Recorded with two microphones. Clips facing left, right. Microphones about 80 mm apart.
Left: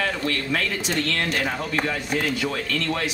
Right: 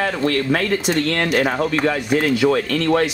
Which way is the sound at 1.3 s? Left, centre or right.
Right.